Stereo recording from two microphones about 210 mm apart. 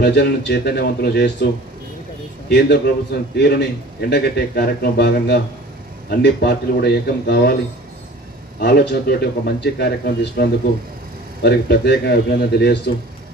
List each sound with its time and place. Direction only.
0.0 s a man's voice: 50° left (ahead or behind)
2.5 s a man's voice: 50° left (ahead or behind)
8.5 s a man's voice: 50° left (ahead or behind)